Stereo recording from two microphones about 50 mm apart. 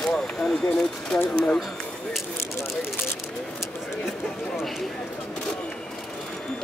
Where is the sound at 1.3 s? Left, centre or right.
Left.